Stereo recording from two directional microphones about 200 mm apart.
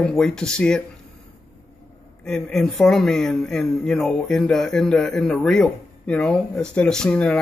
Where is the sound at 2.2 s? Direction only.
5° left (ahead or behind).